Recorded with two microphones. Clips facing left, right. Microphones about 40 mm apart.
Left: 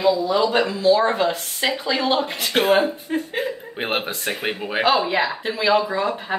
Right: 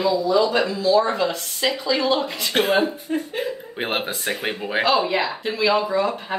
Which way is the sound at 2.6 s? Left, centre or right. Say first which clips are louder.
Left 2 dB; left.